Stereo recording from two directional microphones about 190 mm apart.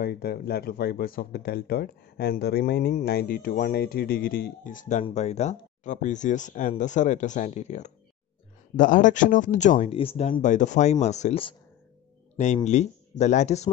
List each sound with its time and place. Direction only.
0.0 s speech: 55° left (ahead or behind)
9.9 s speech: 30° left (ahead or behind)
12.7 s speech: 35° left (ahead or behind)